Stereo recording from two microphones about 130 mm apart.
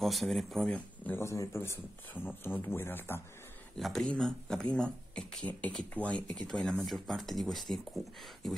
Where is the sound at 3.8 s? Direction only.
5° left (ahead or behind).